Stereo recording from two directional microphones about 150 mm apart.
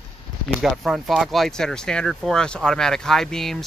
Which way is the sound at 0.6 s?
Centre (ahead or behind).